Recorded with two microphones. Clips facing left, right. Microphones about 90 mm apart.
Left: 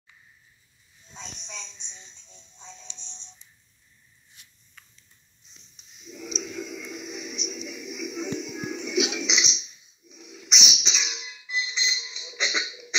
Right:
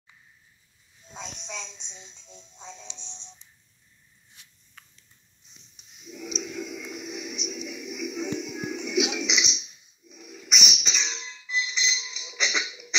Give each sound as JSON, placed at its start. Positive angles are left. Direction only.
{"t": 1.9, "sound": "speech", "side_deg": -5}
{"t": 5.8, "sound": "music", "side_deg": -10}
{"t": 9.7, "sound": "a sound", "side_deg": 0}